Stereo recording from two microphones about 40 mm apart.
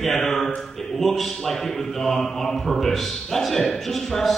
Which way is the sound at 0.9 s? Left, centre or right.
Centre.